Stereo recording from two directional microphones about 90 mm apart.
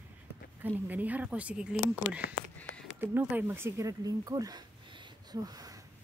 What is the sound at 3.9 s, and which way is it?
Speech, 40° right (ahead or behind).